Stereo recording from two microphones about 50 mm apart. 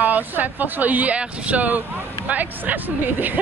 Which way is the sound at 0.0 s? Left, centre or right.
Right.